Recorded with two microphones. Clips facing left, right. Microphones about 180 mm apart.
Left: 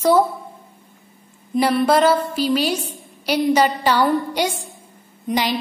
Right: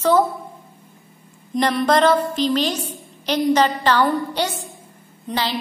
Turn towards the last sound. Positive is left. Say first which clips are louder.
# left 3 dB
turn(degrees=15)  # may be behind; listen again after turning